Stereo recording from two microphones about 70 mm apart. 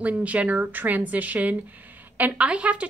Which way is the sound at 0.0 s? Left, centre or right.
Right.